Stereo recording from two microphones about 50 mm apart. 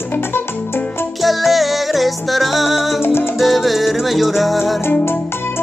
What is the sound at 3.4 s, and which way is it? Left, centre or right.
Music, centre.